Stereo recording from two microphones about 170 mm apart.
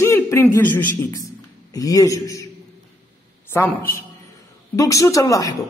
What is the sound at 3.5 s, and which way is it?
A woman's voice, 10° left (ahead or behind).